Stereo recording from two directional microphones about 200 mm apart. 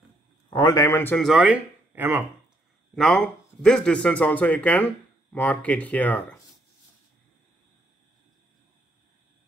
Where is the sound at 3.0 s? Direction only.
Centre (ahead or behind).